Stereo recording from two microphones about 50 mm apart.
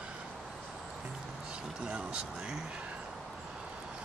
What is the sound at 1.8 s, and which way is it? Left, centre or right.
Speech, centre.